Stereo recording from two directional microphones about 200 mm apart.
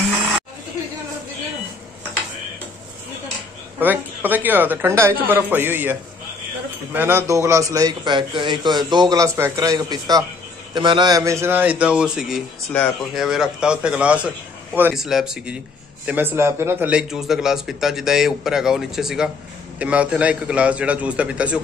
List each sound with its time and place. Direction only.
3.8 s a man's voice: 10° right (ahead or behind)